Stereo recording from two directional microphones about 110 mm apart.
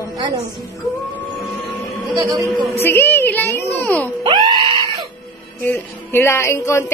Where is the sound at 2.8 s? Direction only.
20° left (ahead or behind).